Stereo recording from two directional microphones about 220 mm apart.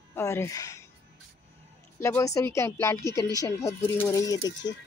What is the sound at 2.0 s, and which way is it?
Speech, 15° left (ahead or behind).